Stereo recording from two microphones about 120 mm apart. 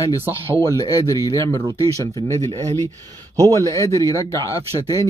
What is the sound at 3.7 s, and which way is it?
Speech, 25° left (ahead or behind).